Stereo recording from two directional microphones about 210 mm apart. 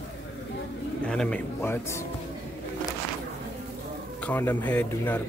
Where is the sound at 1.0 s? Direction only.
5° left (ahead or behind).